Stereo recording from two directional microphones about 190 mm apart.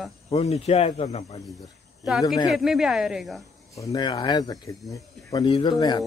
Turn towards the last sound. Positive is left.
turn(degrees=25)  # may be behind; listen again after turning